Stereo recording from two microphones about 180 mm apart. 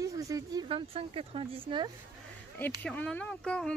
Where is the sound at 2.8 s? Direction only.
5° left (ahead or behind).